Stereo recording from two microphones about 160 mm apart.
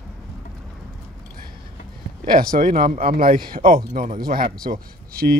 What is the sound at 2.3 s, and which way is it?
Speech, 60° right (ahead or behind).